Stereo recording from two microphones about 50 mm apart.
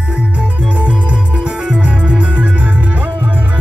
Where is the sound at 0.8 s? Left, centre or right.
Right.